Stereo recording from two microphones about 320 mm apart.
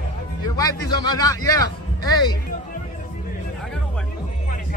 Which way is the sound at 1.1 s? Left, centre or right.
Centre.